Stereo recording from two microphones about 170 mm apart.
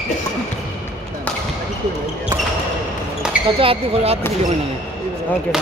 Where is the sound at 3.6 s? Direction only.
35° right (ahead or behind).